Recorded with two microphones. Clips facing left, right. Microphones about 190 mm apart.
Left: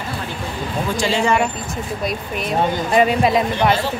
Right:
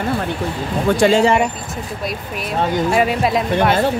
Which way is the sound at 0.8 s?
55° right (ahead or behind).